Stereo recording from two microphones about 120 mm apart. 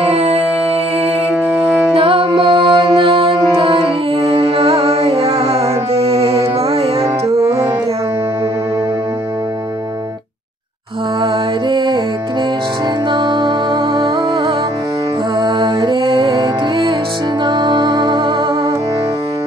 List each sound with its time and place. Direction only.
0.0 s music: 60° right (ahead or behind)
2.0 s music: 50° right (ahead or behind)
7.3 s music: 30° right (ahead or behind)
11.7 s music: 40° right (ahead or behind)
13.1 s music: 40° right (ahead or behind)